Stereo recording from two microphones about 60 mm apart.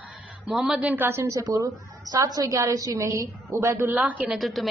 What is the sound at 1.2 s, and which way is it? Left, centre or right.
A woman's voice, right.